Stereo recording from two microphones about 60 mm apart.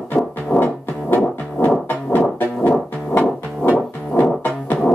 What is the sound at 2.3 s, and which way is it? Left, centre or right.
Music, left.